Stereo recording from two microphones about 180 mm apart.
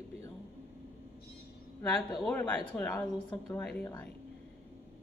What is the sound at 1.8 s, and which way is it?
Speech, 5° left (ahead or behind).